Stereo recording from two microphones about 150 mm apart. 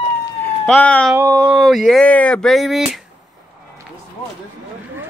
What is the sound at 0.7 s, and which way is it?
Speech, 10° left (ahead or behind).